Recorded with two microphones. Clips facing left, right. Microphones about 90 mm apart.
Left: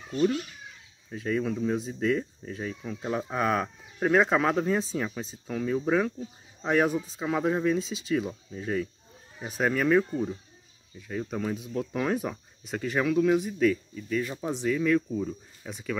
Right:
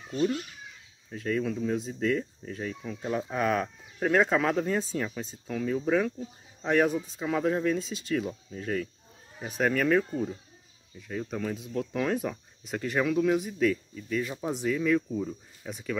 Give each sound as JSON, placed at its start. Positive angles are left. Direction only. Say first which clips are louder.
{"t": 1.1, "sound": "speech", "louder": "left 1 dB", "side_deg": 10}
{"t": 1.8, "sound": "speech", "louder": "left 1 dB", "side_deg": 5}